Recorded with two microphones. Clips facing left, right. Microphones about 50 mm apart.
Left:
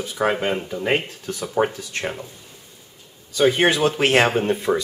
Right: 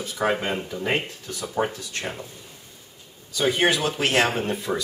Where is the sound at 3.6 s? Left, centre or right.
Left.